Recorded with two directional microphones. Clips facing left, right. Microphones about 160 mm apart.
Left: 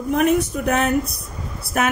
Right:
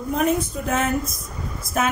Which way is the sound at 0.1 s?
70° left (ahead or behind).